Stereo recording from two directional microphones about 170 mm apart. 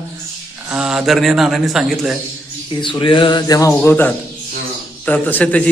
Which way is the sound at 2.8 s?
30° left (ahead or behind).